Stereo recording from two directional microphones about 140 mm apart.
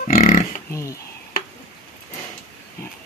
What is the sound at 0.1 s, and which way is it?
Pig, 70° left (ahead or behind).